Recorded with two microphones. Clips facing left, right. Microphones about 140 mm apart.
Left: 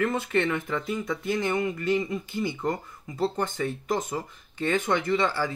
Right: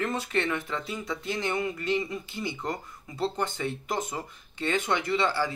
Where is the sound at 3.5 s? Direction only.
40° left (ahead or behind).